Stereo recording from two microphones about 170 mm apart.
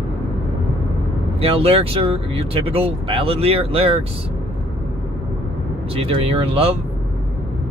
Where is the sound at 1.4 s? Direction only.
35° right (ahead or behind).